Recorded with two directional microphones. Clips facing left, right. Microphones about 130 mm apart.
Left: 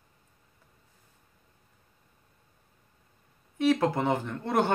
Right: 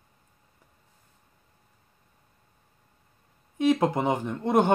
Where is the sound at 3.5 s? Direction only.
15° right (ahead or behind).